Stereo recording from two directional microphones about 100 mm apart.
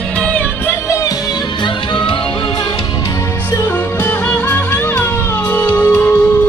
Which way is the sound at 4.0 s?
15° left (ahead or behind).